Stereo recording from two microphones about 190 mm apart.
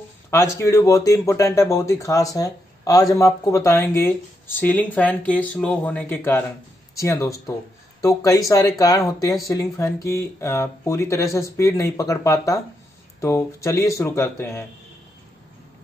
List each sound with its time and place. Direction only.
0.3 s speech: 15° left (ahead or behind)